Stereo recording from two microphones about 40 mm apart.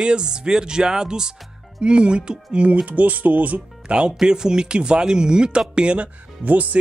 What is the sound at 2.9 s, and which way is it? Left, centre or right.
Music, right.